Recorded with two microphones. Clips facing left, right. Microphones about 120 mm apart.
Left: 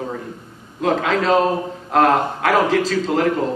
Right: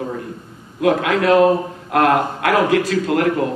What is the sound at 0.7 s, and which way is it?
A man's voice, 65° right (ahead or behind).